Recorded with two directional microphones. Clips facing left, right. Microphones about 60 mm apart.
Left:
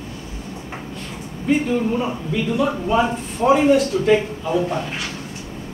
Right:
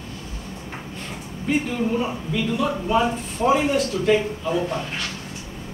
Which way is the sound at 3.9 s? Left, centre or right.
Centre.